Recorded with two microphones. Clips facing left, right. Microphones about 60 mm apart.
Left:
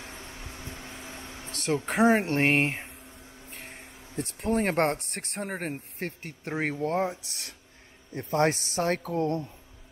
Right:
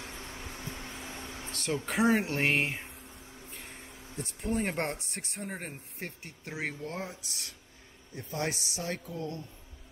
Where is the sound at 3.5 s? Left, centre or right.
Left.